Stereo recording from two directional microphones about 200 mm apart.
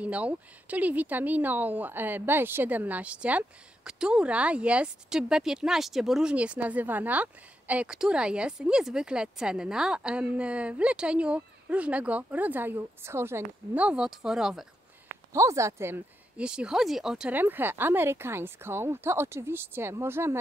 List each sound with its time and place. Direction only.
0.0 s speech: 5° right (ahead or behind)
15.3 s speech: 15° right (ahead or behind)